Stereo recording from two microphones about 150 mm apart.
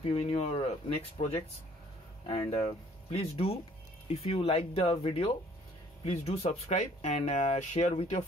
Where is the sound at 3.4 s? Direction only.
40° left (ahead or behind).